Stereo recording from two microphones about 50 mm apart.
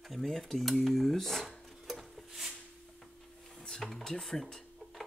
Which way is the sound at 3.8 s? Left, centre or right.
Centre.